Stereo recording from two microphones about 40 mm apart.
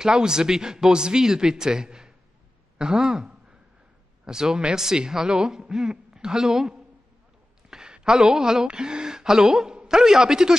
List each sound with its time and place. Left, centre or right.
0.0 s a man's voice: centre
7.7 s a sound: centre
8.6 s a man's voice: right